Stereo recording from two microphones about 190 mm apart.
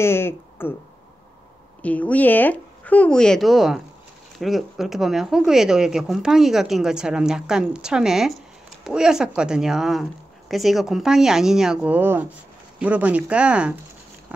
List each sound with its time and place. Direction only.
0.0 s speech: 10° left (ahead or behind)
1.8 s speech: 10° left (ahead or behind)